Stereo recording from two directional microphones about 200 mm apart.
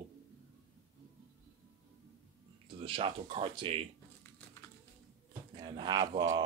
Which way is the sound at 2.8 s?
25° right (ahead or behind).